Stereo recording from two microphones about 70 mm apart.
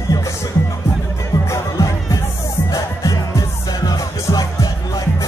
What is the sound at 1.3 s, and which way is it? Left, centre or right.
Music, left.